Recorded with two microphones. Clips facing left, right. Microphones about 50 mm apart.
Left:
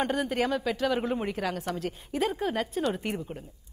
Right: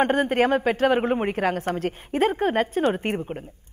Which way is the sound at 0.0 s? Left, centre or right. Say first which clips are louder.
Right 7 dB; right.